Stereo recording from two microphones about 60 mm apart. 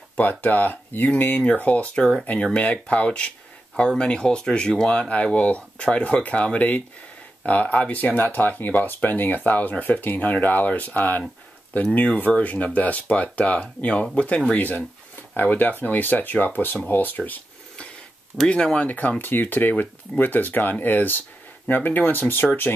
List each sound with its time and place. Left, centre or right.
0.2 s speech: left